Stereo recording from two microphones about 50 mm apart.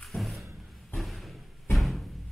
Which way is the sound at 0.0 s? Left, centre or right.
Centre.